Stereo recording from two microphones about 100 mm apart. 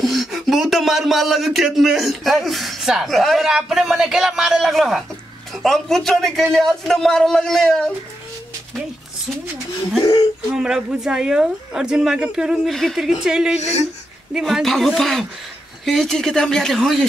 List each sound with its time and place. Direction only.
0.0 s speech: centre (ahead or behind)
10.5 s a woman's voice: 5° right (ahead or behind)
13.6 s speech: 90° left
14.3 s speech: centre (ahead or behind)